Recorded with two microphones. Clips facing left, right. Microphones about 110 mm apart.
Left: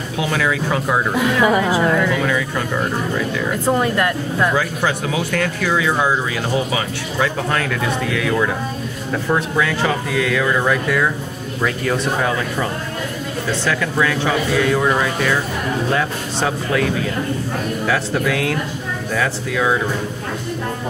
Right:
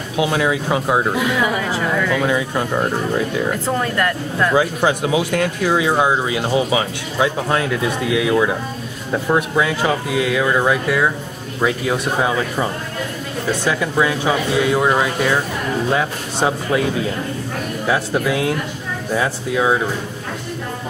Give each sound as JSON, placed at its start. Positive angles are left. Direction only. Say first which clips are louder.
{"t": 0.2, "sound": "speech", "louder": "right 2 dB", "side_deg": -20}
{"t": 1.7, "sound": "speech", "louder": "left 4 dB", "side_deg": 15}
{"t": 2.2, "sound": "speech", "louder": "right 1 dB", "side_deg": -20}
{"t": 3.6, "sound": "speech", "louder": "left 2 dB", "side_deg": 15}
{"t": 4.6, "sound": "speech", "louder": "right 3 dB", "side_deg": -20}
{"t": 17.8, "sound": "speech", "louder": "right 2 dB", "side_deg": -20}